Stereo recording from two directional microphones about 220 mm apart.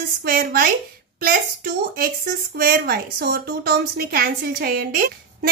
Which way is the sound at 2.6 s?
45° right (ahead or behind).